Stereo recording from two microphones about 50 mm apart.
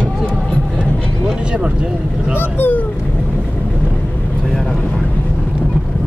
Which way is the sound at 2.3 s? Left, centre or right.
Left.